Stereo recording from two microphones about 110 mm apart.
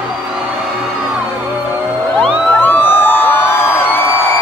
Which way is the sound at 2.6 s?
20° left (ahead or behind).